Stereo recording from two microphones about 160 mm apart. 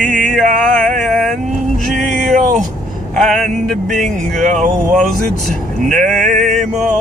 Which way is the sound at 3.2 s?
5° left (ahead or behind).